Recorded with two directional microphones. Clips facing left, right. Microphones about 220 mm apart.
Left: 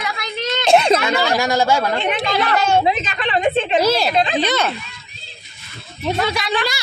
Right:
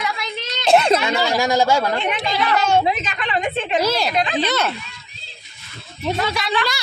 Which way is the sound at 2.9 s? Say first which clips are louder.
Left 3 dB; 30° left (ahead or behind).